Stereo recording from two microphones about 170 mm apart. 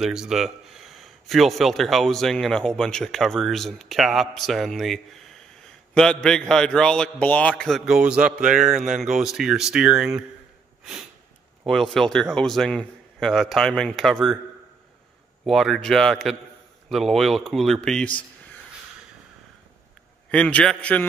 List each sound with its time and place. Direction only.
0.0 s a man's voice: 5° right (ahead or behind)
10.8 s sniff: 5° right (ahead or behind)
11.6 s a man's voice: centre (ahead or behind)
15.4 s a man's voice: centre (ahead or behind)
20.2 s a man's voice: 5° left (ahead or behind)